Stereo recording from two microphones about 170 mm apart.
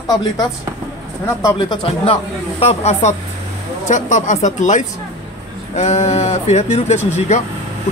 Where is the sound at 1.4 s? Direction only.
25° left (ahead or behind).